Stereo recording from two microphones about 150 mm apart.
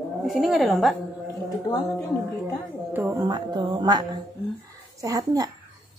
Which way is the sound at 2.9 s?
15° right (ahead or behind).